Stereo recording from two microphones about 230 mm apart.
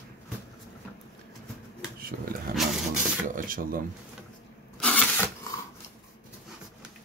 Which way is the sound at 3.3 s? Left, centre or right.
Right.